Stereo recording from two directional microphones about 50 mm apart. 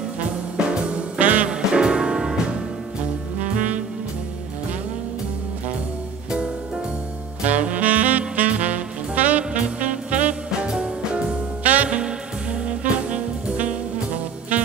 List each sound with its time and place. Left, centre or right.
0.6 s music: right
1.5 s music: centre
3.3 s saxophone: right
7.4 s saxophone: right
10.7 s music: right